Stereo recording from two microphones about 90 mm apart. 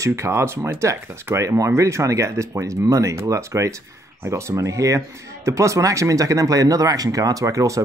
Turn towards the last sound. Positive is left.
turn(degrees=-35)  # may be behind; listen again after turning